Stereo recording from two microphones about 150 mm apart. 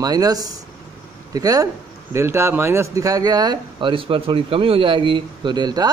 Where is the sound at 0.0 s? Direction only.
25° right (ahead or behind).